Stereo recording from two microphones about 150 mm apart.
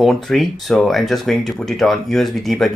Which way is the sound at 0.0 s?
Centre (ahead or behind).